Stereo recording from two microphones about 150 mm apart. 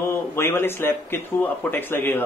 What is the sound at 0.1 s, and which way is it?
Speech, 15° left (ahead or behind).